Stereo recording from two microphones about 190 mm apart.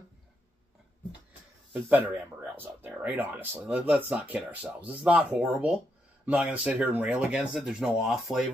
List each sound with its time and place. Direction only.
1.7 s speech: 10° right (ahead or behind)